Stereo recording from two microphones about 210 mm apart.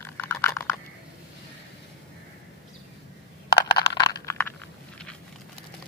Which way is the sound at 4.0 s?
10° left (ahead or behind).